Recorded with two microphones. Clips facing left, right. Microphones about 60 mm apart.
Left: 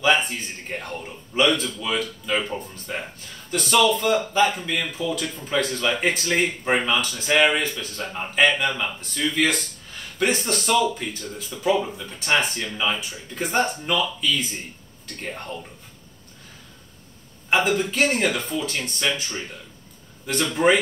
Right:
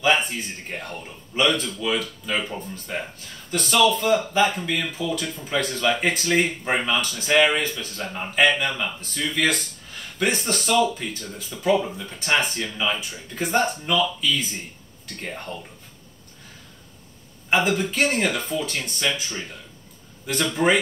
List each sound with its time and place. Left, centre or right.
0.0 s speech: centre
17.5 s a man's voice: centre
20.5 s speech: centre